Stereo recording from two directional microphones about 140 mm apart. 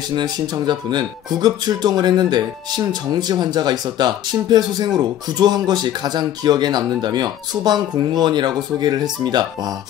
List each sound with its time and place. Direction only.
0.1 s speech: 30° right (ahead or behind)